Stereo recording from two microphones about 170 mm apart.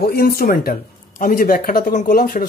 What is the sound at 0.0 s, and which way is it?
Speech, 65° left (ahead or behind).